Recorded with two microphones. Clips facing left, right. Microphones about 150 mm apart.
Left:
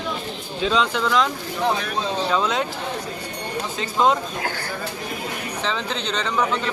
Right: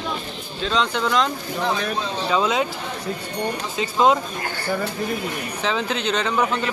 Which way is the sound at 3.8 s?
5° right (ahead or behind).